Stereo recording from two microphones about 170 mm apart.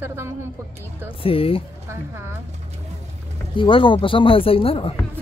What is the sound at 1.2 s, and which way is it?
Speech, 35° left (ahead or behind).